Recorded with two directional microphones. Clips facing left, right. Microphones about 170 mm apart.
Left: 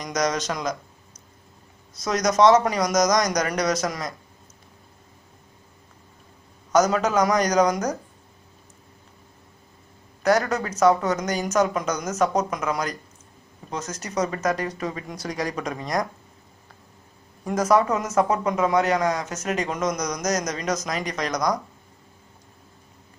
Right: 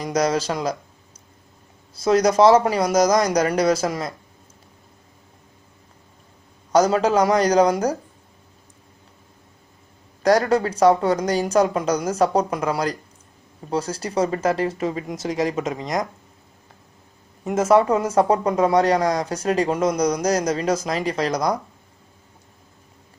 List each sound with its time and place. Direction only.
0.0 s speech: 30° right (ahead or behind)
6.7 s speech: 30° right (ahead or behind)
10.2 s speech: 30° right (ahead or behind)
17.5 s speech: 25° right (ahead or behind)